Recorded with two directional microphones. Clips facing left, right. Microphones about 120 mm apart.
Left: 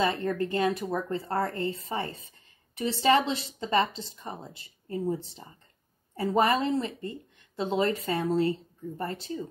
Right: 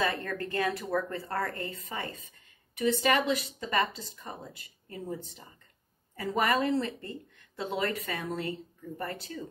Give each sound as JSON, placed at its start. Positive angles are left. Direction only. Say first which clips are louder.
{"t": 0.0, "sound": "speech", "louder": "left 4 dB", "side_deg": 25}